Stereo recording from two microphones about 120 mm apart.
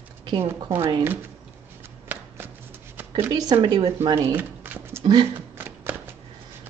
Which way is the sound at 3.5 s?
50° right (ahead or behind).